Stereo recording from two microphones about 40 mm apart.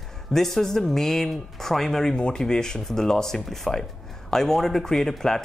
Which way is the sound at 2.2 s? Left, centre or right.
Left.